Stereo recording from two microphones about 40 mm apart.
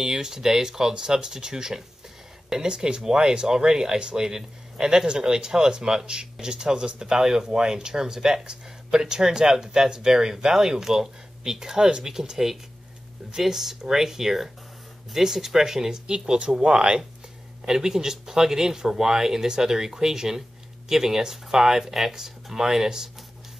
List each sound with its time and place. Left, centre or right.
0.0 s speech: centre
16.1 s speech: right